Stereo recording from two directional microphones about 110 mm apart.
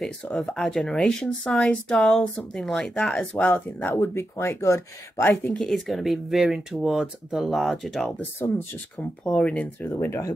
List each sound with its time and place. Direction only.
0.0 s speech: 5° left (ahead or behind); by 5.3 s 25° left (ahead or behind)
5.6 s speech: centre (ahead or behind)
8.2 s speech: 20° left (ahead or behind)